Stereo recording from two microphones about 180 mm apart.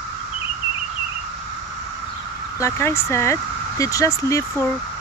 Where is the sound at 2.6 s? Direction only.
15° left (ahead or behind).